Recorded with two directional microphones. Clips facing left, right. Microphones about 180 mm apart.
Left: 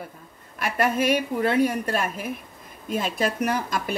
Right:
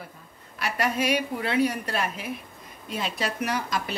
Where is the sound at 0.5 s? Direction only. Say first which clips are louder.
Left 3 dB; 50° left (ahead or behind).